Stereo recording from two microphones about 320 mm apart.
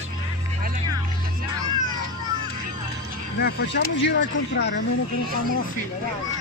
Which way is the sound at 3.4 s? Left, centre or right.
Left.